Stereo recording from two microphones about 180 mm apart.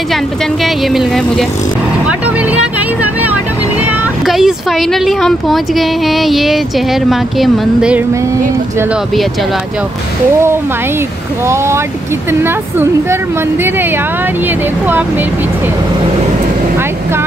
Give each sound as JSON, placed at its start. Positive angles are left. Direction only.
{"t": 0.8, "sound": "speech", "side_deg": 0}
{"t": 2.0, "sound": "vehicle", "side_deg": -5}
{"t": 3.8, "sound": "speech", "side_deg": -5}
{"t": 11.4, "sound": "speech", "side_deg": -15}